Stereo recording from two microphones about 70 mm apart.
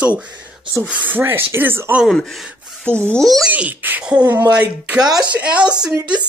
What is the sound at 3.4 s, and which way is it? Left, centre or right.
Speech, right.